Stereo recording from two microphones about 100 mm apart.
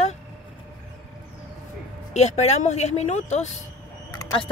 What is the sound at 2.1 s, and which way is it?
Speech, 90° left.